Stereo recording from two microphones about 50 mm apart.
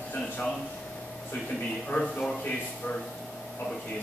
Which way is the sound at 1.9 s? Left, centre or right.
Left.